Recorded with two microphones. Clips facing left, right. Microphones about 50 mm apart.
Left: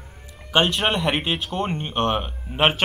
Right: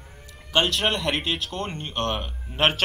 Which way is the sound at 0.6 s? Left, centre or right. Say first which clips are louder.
Left 3 dB; centre.